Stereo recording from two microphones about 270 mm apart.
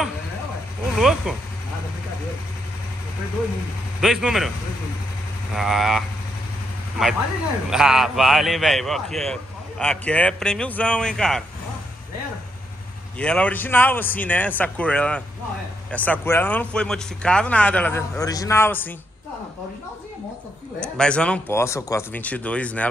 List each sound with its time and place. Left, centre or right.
0.9 s a sound: centre
4.0 s a man's voice: centre
5.5 s a man's voice: centre
13.2 s a man's voice: centre
20.8 s a man's voice: centre